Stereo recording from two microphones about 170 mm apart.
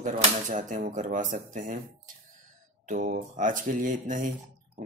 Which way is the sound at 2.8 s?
50° right (ahead or behind).